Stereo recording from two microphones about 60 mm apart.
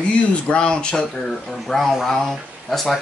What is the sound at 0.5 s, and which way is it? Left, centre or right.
Speech, centre.